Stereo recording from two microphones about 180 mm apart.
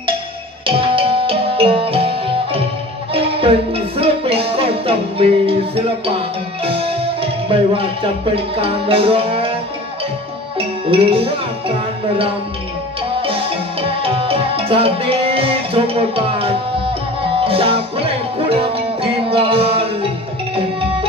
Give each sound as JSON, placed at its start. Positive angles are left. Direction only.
{"t": 0.7, "sound": "music", "side_deg": -30}
{"t": 10.9, "sound": "speech", "side_deg": -30}
{"t": 13.2, "sound": "music", "side_deg": -30}